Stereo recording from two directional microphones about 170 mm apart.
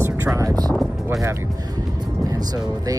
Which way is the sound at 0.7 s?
Centre (ahead or behind).